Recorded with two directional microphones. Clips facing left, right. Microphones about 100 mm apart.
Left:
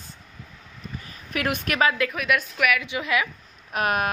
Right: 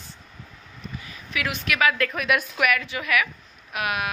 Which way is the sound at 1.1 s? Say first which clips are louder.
Left 3 dB; 45° left (ahead or behind).